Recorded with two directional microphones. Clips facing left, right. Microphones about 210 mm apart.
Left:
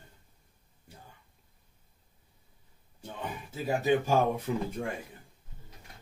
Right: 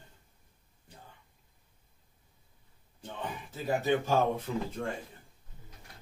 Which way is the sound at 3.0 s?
10° left (ahead or behind).